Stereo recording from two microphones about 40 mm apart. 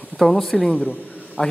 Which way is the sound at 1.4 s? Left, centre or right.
Left.